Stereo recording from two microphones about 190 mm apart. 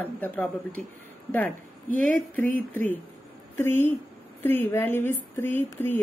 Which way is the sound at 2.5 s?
10° left (ahead or behind).